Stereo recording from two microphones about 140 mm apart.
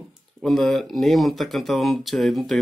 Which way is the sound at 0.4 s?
Centre (ahead or behind).